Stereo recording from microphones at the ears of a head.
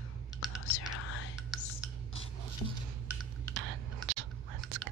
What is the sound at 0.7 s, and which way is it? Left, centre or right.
Whispering, left.